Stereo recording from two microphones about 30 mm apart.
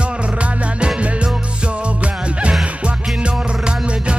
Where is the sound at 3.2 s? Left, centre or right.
Right.